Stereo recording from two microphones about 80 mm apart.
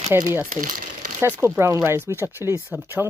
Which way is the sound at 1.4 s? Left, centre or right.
Right.